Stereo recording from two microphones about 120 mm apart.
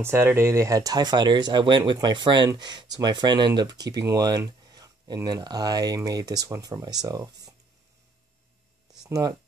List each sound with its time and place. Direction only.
0.0 s speech: 20° right (ahead or behind)
9.0 s speech: 30° right (ahead or behind)